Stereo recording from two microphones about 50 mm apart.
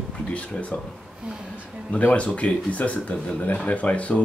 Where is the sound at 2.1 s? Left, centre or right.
Left.